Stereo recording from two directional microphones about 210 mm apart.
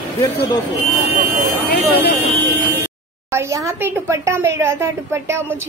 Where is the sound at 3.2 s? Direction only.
15° right (ahead or behind).